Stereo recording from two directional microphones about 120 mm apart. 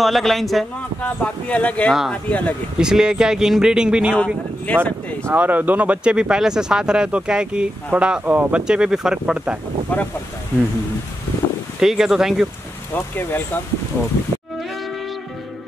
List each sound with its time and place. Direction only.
0.0 s speech: centre (ahead or behind)
1.0 s speech: 10° left (ahead or behind)
2.8 s speech: 5° right (ahead or behind)
4.7 s speech: 10° left (ahead or behind)
5.2 s speech: 15° right (ahead or behind)
9.9 s speech: 10° left (ahead or behind)
11.8 s speech: 5° right (ahead or behind)
12.9 s speech: 15° left (ahead or behind)